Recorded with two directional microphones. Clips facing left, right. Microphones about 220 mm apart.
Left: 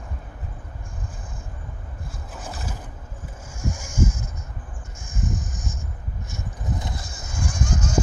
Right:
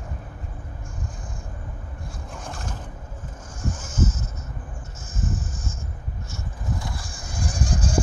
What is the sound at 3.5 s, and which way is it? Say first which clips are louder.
Vehicle: left 1 dB; 10° left (ahead or behind).